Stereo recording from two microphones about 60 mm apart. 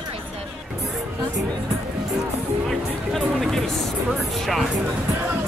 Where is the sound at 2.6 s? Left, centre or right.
Centre.